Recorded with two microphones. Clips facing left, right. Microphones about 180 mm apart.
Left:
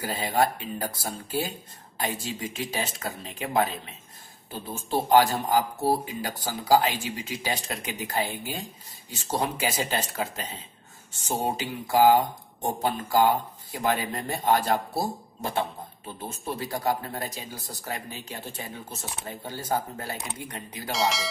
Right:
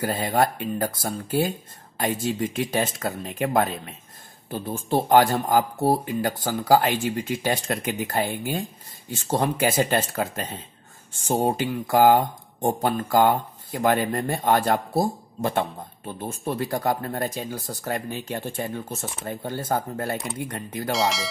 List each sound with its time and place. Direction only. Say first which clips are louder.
0.0 s speech: right 3 dB; 55° right (ahead or behind)
16.3 s speech: right 5 dB; 55° right (ahead or behind)
20.9 s speech: right 2 dB; centre (ahead or behind)